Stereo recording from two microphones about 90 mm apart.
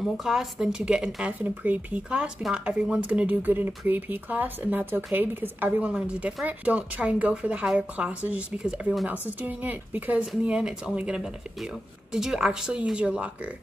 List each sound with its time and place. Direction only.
0.0 s speech: 5° right (ahead or behind)